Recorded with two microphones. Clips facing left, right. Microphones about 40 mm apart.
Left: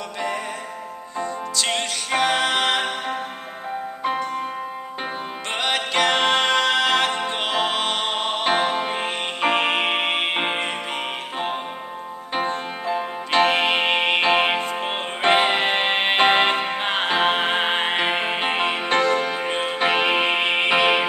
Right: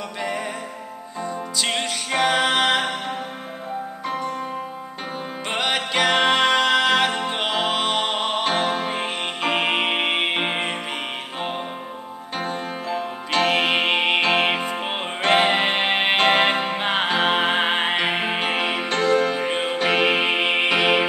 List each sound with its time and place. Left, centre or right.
1.2 s music: centre
5.5 s music: centre
8.5 s music: centre
12.4 s music: centre
19.5 s music: centre